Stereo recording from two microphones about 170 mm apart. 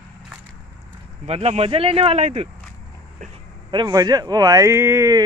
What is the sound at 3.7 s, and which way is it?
Speech, 25° right (ahead or behind).